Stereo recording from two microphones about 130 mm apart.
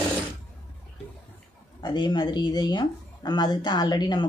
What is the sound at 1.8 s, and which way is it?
Speech, 35° left (ahead or behind).